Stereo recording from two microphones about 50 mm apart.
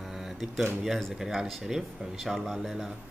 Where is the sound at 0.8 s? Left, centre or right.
Centre.